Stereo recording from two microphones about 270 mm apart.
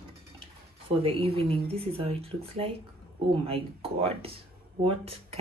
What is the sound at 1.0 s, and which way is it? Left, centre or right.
Speech, right.